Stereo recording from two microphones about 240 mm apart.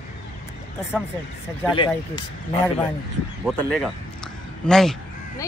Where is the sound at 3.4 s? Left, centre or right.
Centre.